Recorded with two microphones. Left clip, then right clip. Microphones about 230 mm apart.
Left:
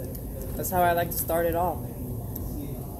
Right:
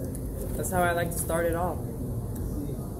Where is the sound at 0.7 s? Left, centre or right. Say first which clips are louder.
Left 3 dB; left.